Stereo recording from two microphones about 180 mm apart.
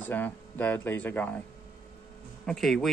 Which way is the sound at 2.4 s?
Centre (ahead or behind).